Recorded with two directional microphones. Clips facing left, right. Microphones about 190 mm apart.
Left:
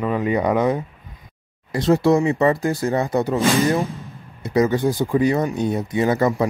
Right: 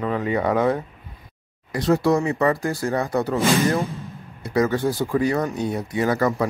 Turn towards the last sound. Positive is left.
turn(degrees=20)  # may be behind; listen again after turning